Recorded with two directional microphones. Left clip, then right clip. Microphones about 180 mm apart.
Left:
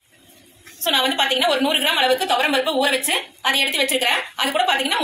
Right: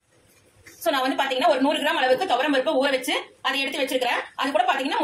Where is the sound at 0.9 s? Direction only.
25° right (ahead or behind).